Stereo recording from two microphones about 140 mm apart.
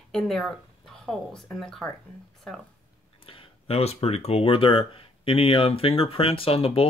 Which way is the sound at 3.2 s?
40° left (ahead or behind).